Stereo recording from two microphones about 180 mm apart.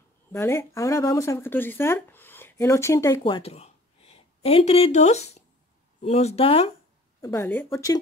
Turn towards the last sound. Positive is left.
turn(degrees=20)  # may be behind; listen again after turning